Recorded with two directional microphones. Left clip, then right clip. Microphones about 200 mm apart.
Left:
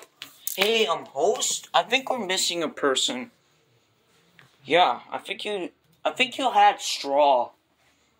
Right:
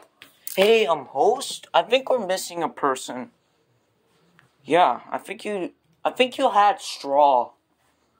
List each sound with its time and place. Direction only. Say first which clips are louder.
0.7 s speech: right 4 dB; 40° right (ahead or behind)
4.6 s speech: right 2 dB; 30° right (ahead or behind)
6.5 s speech: even; 20° right (ahead or behind)